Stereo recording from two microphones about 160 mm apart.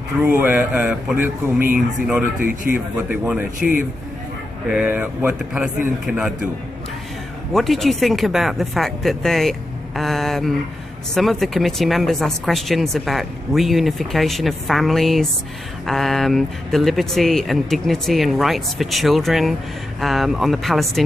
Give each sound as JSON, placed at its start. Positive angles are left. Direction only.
{"t": 0.2, "sound": "speech", "side_deg": -10}
{"t": 2.4, "sound": "speech", "side_deg": 55}
{"t": 3.0, "sound": "speech", "side_deg": -10}
{"t": 7.5, "sound": "speech", "side_deg": 0}